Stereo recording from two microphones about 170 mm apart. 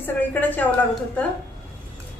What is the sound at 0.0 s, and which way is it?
Speech, 10° left (ahead or behind).